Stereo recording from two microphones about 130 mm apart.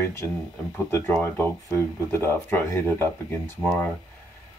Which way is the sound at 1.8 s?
20° left (ahead or behind).